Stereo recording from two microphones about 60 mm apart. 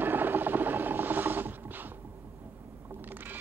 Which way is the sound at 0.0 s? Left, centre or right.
Right.